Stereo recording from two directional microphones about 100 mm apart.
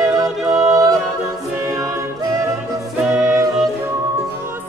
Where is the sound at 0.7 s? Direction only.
35° right (ahead or behind).